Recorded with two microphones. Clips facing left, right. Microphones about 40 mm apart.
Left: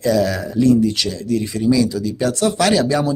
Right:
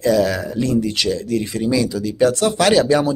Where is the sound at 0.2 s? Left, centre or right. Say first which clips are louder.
Left 2 dB; right.